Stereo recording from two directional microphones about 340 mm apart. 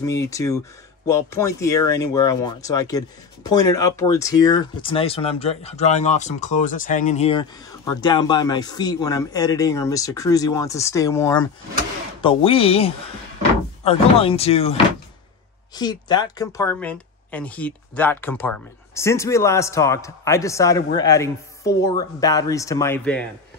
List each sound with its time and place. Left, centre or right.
0.0 s speech: centre